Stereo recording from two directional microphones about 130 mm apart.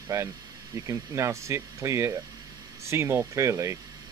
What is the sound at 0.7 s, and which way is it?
Speech, 25° right (ahead or behind).